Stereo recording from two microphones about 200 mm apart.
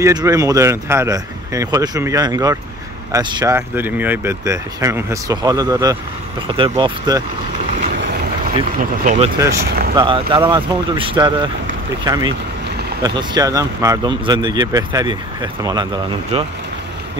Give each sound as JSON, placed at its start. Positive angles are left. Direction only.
{"t": 0.0, "sound": "speech", "side_deg": -20}
{"t": 8.7, "sound": "speech", "side_deg": -40}
{"t": 9.4, "sound": "speech", "side_deg": -15}